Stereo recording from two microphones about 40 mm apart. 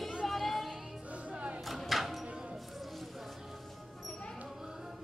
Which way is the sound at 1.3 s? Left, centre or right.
Right.